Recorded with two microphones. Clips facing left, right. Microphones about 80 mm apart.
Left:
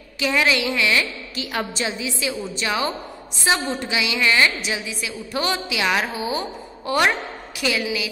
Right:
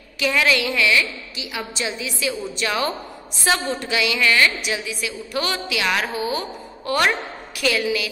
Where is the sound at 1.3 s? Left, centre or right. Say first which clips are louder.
Left 4 dB; left.